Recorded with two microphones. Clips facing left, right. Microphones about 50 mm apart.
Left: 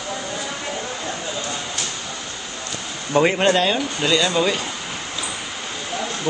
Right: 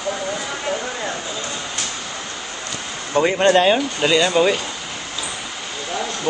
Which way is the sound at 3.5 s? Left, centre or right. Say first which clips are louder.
Right 4 dB; centre.